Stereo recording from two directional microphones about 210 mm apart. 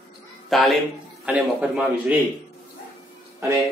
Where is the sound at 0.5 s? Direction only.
Centre (ahead or behind).